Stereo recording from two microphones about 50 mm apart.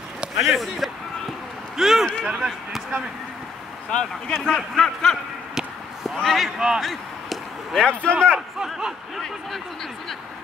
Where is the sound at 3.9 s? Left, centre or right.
Centre.